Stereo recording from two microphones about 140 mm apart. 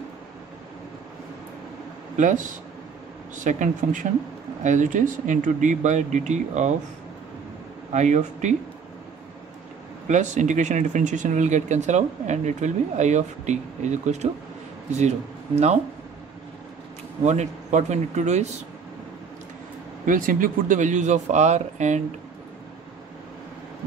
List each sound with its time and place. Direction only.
2.1 s speech: 65° right (ahead or behind)
7.9 s speech: 55° right (ahead or behind)
10.0 s speech: 60° right (ahead or behind)
17.2 s speech: 55° right (ahead or behind)
20.1 s speech: 75° right (ahead or behind)